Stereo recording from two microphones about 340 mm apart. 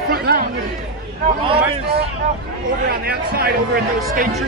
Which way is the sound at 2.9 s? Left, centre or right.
Right.